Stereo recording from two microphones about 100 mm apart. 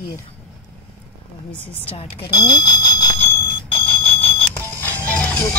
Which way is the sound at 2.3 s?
45° left (ahead or behind).